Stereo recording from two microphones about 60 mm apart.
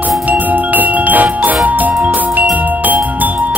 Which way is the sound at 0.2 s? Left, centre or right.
Right.